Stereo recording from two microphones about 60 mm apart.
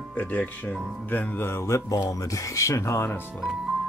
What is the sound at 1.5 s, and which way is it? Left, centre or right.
Mantra, left.